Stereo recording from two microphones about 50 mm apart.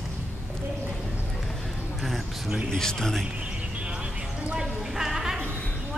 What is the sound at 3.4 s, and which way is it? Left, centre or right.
Music, right.